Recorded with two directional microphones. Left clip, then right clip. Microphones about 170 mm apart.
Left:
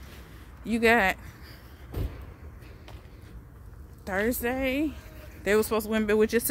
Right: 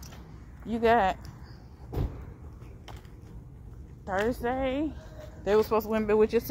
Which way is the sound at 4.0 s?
70° left (ahead or behind).